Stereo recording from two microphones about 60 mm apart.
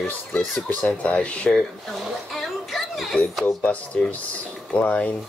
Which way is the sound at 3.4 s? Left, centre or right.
Left.